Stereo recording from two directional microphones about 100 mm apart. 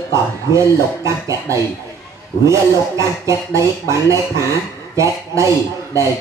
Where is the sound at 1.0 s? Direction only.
30° right (ahead or behind).